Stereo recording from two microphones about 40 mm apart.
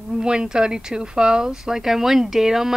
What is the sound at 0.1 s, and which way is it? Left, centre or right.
Speech, right.